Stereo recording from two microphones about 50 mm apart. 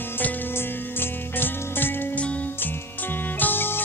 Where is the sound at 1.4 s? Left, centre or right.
Left.